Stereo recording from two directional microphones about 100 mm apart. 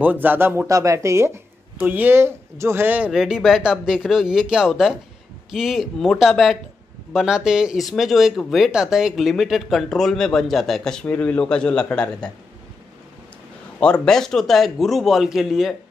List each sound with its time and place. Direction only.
0.0 s speech: 15° right (ahead or behind)
3.1 s speech: 5° right (ahead or behind)
13.7 s speech: 10° left (ahead or behind)